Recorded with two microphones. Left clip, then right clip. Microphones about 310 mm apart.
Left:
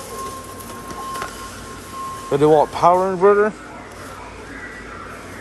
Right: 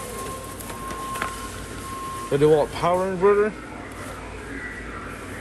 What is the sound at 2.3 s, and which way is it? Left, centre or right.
Speech, centre.